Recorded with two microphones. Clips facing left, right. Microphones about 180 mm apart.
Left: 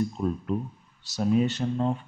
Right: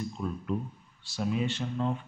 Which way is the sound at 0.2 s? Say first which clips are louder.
Left 5 dB; 40° left (ahead or behind).